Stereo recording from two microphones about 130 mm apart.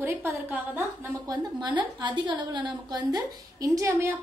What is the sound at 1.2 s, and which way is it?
A woman's voice, 30° right (ahead or behind).